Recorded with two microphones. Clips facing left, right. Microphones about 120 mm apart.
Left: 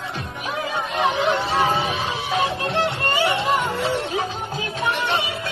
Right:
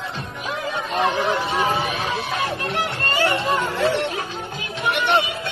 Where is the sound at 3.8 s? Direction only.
75° right (ahead or behind).